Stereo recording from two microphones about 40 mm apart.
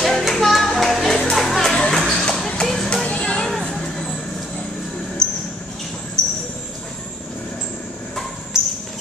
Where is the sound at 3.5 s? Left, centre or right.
Centre.